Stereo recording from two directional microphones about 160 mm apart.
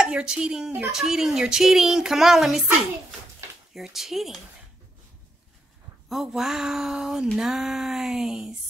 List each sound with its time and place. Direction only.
0.0 s speech: 5° right (ahead or behind)
3.7 s speech: centre (ahead or behind)
6.0 s speech: centre (ahead or behind)